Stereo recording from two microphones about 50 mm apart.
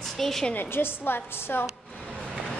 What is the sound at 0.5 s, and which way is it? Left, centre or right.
A woman's voice, left.